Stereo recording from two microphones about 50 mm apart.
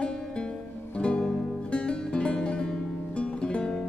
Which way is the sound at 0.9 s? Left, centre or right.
Centre.